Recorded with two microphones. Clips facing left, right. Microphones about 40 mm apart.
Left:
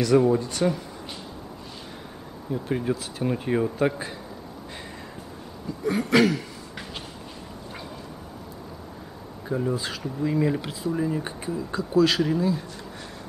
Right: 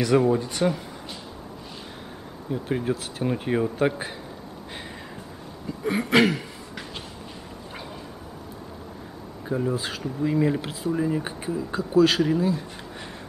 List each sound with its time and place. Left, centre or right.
0.0 s speech: centre
2.5 s speech: centre
5.9 s a sound: right
9.5 s speech: centre